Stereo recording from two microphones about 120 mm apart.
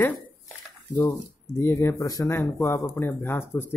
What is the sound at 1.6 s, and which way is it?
Speech, 20° left (ahead or behind).